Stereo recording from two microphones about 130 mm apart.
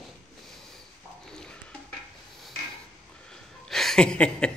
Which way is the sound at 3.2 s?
5° left (ahead or behind).